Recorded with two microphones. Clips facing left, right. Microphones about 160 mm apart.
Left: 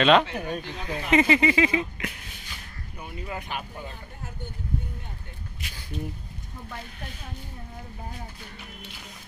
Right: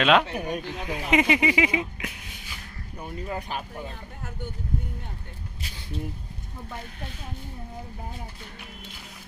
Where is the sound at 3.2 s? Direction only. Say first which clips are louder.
Right 2 dB; 35° right (ahead or behind).